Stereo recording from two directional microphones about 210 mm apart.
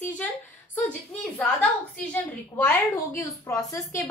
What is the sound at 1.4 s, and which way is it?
A woman's voice, 5° left (ahead or behind).